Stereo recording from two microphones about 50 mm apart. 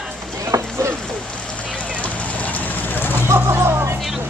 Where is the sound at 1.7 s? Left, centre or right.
Left.